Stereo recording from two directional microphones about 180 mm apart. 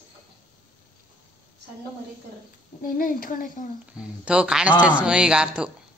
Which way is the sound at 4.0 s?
5° right (ahead or behind).